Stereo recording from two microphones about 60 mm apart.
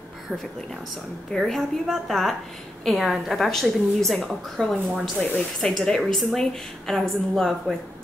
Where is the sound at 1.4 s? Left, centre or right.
Centre.